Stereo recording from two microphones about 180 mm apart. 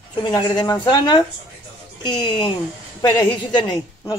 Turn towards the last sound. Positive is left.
turn(degrees=20)  # may be behind; listen again after turning